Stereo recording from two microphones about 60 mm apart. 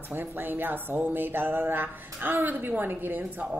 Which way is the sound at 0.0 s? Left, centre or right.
Right.